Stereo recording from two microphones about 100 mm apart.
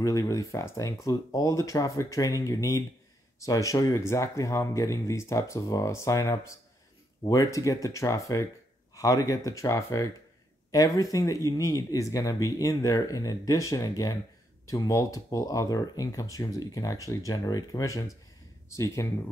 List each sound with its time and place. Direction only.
0.0 s speech: 35° left (ahead or behind)